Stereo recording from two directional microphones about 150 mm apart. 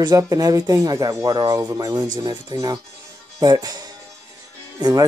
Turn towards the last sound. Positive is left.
turn(degrees=-25)  # may be behind; listen again after turning